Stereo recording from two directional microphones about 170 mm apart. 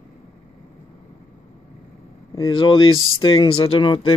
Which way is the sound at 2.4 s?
30° left (ahead or behind).